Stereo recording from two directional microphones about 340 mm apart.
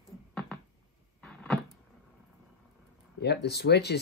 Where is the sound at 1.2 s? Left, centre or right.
Centre.